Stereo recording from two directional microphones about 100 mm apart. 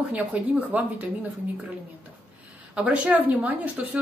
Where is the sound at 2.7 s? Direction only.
15° right (ahead or behind).